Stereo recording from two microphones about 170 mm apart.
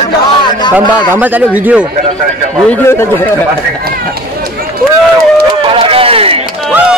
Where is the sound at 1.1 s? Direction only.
10° right (ahead or behind).